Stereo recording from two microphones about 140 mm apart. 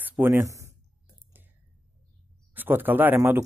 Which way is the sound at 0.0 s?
15° right (ahead or behind).